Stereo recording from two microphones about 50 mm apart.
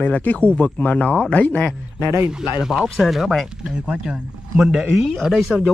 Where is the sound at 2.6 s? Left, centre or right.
Centre.